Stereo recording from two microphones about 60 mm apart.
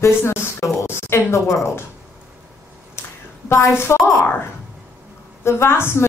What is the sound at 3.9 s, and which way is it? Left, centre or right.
Speech, left.